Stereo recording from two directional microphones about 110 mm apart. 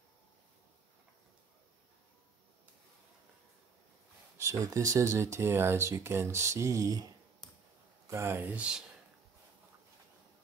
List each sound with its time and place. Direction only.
4.4 s speech: 30° right (ahead or behind)
8.1 s speech: 25° right (ahead or behind)
8.5 s speech: 10° right (ahead or behind)